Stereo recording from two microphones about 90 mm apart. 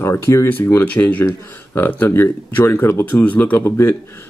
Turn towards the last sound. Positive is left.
turn(degrees=25)  # may be behind; listen again after turning